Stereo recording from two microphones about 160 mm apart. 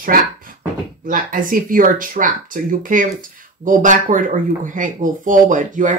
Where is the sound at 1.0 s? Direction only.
55° right (ahead or behind).